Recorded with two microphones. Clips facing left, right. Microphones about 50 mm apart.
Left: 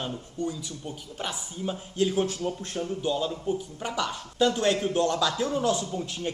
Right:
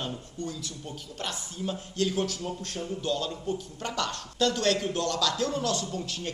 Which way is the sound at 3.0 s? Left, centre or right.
Centre.